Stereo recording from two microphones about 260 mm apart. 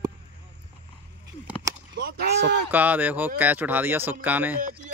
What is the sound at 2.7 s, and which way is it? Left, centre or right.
Speech, centre.